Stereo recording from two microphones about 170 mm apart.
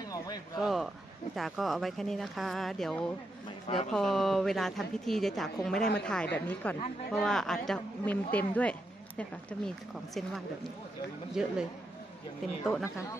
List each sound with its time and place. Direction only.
0.6 s a woman's voice: centre (ahead or behind)
3.6 s speech: 35° left (ahead or behind)
3.9 s a woman's voice: centre (ahead or behind)